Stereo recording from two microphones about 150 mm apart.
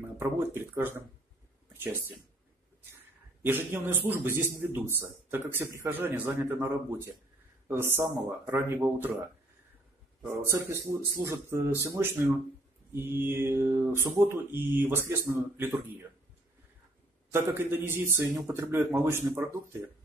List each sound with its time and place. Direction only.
0.2 s mantra: 15° right (ahead or behind)
1.7 s speech: 15° right (ahead or behind)
3.4 s mantra: 15° right (ahead or behind)
10.2 s mantra: 20° right (ahead or behind)
17.3 s mantra: 15° right (ahead or behind)